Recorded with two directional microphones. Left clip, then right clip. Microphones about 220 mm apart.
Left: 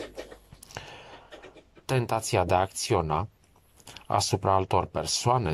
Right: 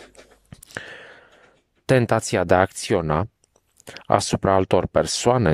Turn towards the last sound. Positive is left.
turn(degrees=-40)  # may be behind; listen again after turning